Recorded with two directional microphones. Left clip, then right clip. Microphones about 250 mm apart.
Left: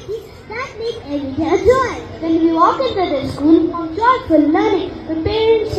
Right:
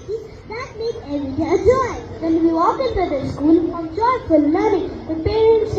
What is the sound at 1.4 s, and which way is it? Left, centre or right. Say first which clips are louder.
A woman's voice: left 3 dB; left.